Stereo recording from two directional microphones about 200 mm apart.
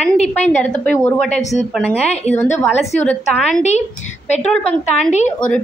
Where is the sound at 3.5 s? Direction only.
35° left (ahead or behind).